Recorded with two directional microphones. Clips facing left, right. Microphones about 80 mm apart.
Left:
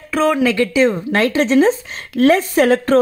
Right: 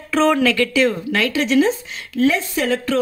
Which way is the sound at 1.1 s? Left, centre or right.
Left.